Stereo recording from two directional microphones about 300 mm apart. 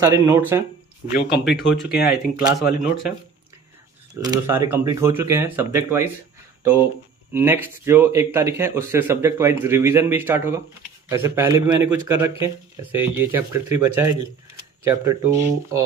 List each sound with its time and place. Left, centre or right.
0.0 s speech: centre
1.1 s speech: left
2.0 s speech: centre
4.1 s speech: centre
7.3 s speech: centre